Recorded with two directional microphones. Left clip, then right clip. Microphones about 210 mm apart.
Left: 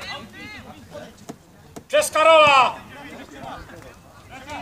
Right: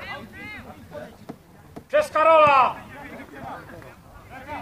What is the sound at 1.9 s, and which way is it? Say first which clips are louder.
Speech: left 2 dB; 35° left (ahead or behind).